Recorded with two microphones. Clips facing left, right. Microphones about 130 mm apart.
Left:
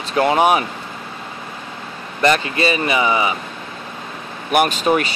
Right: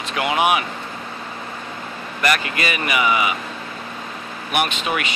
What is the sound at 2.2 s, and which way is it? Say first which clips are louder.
Speech: left 5 dB; 30° left (ahead or behind).